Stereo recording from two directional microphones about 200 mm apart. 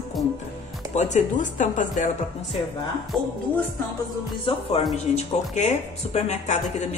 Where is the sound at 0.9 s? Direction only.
35° left (ahead or behind).